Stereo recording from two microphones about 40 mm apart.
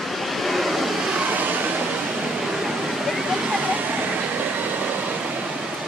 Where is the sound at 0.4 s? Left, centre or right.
Centre.